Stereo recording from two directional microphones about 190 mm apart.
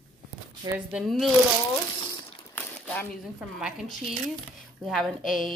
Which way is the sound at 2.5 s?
10° left (ahead or behind).